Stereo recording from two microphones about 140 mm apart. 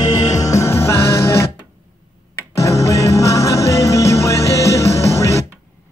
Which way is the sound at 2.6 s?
20° left (ahead or behind).